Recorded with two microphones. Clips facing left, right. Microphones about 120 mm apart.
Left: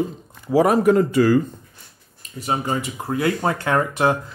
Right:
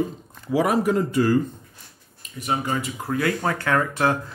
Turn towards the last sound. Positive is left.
turn(degrees=20)  # may be behind; listen again after turning